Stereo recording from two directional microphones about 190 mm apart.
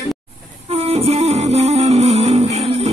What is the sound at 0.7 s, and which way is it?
Music, 30° right (ahead or behind).